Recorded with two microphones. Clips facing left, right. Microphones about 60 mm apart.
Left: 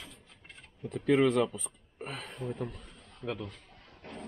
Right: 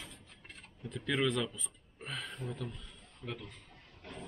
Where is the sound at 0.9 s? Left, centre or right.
Left.